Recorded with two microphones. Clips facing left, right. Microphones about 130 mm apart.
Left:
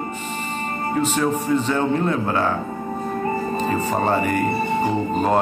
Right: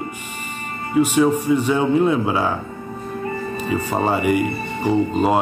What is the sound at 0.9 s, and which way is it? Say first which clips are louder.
Speech: right 6 dB; 10° right (ahead or behind).